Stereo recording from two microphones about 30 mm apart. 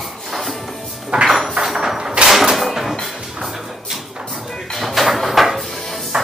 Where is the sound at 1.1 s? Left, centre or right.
Right.